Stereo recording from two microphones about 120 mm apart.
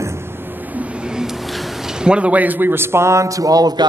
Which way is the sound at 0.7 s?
10° right (ahead or behind).